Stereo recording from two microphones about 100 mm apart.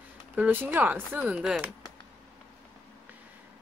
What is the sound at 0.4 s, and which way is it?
Speech, 20° right (ahead or behind).